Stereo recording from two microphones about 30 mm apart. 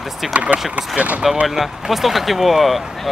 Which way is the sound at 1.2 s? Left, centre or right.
Centre.